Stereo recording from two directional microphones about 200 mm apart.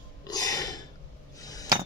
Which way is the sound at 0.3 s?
15° left (ahead or behind).